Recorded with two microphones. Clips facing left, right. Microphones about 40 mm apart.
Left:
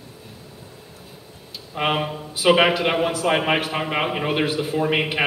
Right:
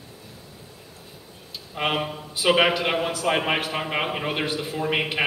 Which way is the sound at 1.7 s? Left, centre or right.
Centre.